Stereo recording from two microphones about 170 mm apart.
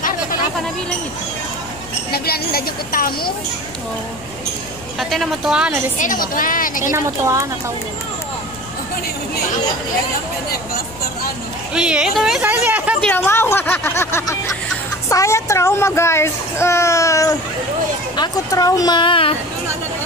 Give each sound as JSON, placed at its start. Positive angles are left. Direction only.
{"t": 2.0, "sound": "a woman's voice", "side_deg": 65}
{"t": 4.9, "sound": "a woman's voice", "side_deg": 0}
{"t": 5.9, "sound": "a woman's voice", "side_deg": 50}
{"t": 6.8, "sound": "a woman's voice", "side_deg": -20}
{"t": 11.7, "sound": "a woman's voice", "side_deg": -5}
{"t": 13.0, "sound": "speech", "side_deg": 5}